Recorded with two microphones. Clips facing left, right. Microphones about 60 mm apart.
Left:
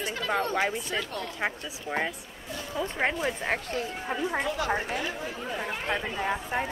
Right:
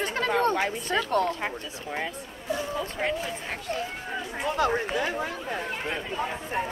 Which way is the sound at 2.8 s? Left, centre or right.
Left.